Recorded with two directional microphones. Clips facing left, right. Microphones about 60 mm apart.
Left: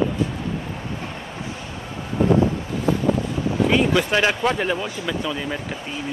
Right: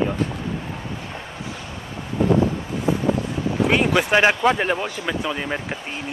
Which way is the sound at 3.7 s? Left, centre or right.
Right.